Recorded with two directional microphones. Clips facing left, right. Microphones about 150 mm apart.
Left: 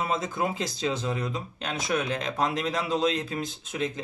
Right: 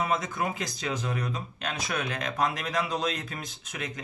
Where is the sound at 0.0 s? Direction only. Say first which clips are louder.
Left 1 dB; 25° left (ahead or behind).